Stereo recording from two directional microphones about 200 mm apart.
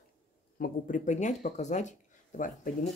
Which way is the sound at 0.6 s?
40° left (ahead or behind).